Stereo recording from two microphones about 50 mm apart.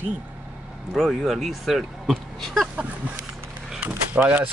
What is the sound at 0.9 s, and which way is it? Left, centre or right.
Speech, centre.